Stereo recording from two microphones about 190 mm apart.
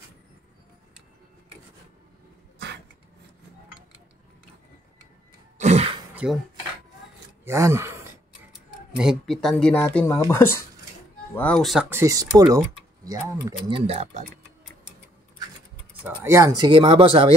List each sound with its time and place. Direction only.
5.6 s throat clearing: 35° right (ahead or behind)
6.2 s speech: 5° right (ahead or behind)
7.4 s speech: 15° right (ahead or behind)
8.9 s speech: centre (ahead or behind)
11.9 s speech: 15° right (ahead or behind)
13.7 s speech: 30° right (ahead or behind)
16.0 s speech: 10° right (ahead or behind)
16.6 s speech: 25° right (ahead or behind)